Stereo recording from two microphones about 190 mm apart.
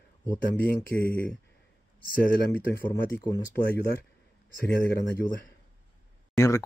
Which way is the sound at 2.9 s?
20° left (ahead or behind).